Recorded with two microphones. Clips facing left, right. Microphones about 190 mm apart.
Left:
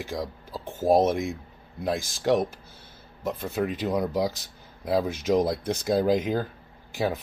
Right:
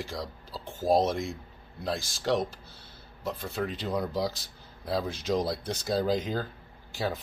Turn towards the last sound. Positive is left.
turn(degrees=20)  # may be behind; listen again after turning